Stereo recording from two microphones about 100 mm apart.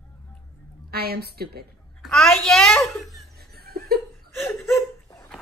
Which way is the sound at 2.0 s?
5° left (ahead or behind).